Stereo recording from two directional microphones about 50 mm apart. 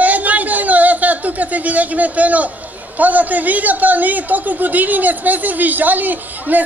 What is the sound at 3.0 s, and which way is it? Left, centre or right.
A man's voice, right.